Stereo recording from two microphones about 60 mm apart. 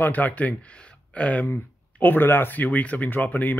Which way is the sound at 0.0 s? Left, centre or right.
Left.